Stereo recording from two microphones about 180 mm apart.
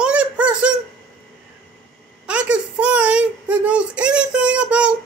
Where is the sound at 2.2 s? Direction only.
5° right (ahead or behind).